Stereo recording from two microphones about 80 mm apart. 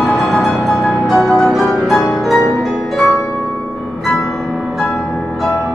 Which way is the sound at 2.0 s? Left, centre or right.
Centre.